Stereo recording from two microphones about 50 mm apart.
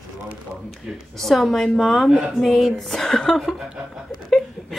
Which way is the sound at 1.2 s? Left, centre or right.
Centre.